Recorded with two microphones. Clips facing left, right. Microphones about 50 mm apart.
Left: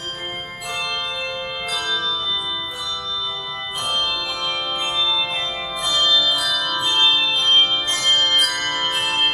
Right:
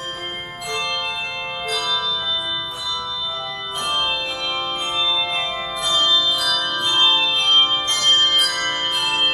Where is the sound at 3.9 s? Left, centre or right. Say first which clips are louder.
Right 1 dB; right.